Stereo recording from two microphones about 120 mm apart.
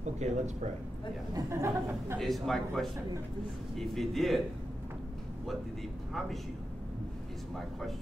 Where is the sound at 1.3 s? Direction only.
25° right (ahead or behind).